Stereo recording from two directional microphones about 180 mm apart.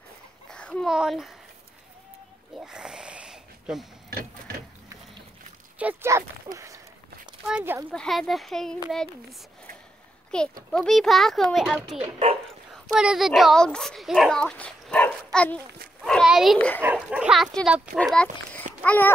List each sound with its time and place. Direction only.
0.5 s speech: 5° left (ahead or behind)
2.6 s a sound: 5° right (ahead or behind)
4.1 s a sound: 60° right (ahead or behind)
5.8 s speech: 10° right (ahead or behind)
7.9 s speech: 5° left (ahead or behind)
10.3 s speech: 5° left (ahead or behind)
12.0 s speech: 35° right (ahead or behind)
12.9 s speech: 5° right (ahead or behind)
16.0 s a sound: centre (ahead or behind)
16.5 s babbling: 10° left (ahead or behind)
16.8 s speech: 10° right (ahead or behind)
18.9 s babbling: 10° left (ahead or behind)